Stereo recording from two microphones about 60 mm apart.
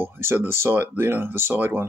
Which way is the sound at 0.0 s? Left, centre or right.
Right.